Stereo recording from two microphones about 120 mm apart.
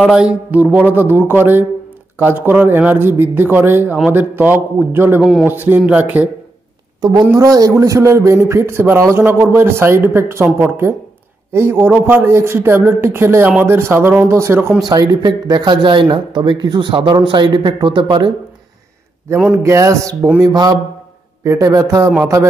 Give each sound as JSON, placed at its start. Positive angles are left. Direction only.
{"t": 0.0, "sound": "speech", "side_deg": -5}
{"t": 7.0, "sound": "a woman's voice", "side_deg": -35}
{"t": 14.9, "sound": "speech", "side_deg": -35}
{"t": 19.6, "sound": "a man's voice", "side_deg": -25}